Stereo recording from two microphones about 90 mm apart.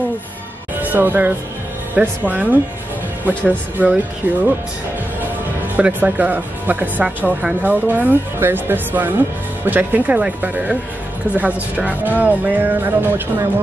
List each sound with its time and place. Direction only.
0.8 s speech: 20° right (ahead or behind)
5.8 s speech: 15° right (ahead or behind)